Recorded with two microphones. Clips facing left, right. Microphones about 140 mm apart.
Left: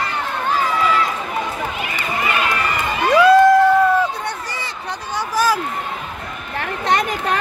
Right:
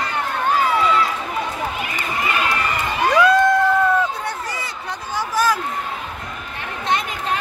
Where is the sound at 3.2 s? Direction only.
5° left (ahead or behind).